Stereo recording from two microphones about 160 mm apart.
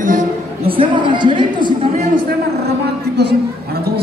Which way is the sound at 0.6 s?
35° right (ahead or behind).